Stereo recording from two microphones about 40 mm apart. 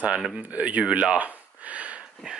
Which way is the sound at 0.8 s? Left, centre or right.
Right.